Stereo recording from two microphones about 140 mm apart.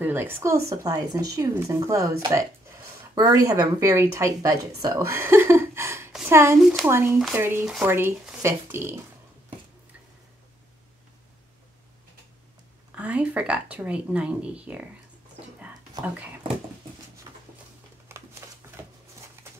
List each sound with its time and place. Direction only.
0.0 s a woman's voice: 15° right (ahead or behind)
12.9 s speech: 10° right (ahead or behind)
17.3 s a sound: 25° right (ahead or behind)